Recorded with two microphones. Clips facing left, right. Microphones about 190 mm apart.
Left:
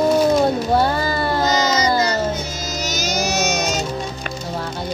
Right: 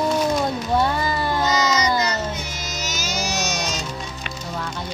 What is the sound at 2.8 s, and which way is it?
Music, 40° left (ahead or behind).